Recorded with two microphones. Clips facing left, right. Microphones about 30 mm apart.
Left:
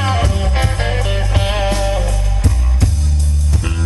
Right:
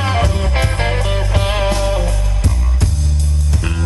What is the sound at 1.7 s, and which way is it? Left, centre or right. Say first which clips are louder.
Music: right 1 dB; centre.